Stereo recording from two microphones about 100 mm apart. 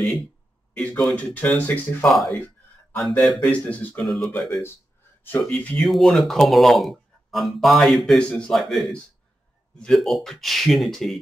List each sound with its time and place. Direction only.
0.7 s speech: 5° left (ahead or behind)
2.0 s speech: centre (ahead or behind)
3.1 s speech: 10° left (ahead or behind)
4.0 s speech: centre (ahead or behind)
4.5 s speech: 25° left (ahead or behind)
5.4 s speech: 10° left (ahead or behind)